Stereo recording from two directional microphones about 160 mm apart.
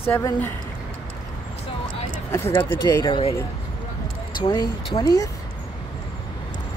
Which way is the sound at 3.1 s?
35° left (ahead or behind).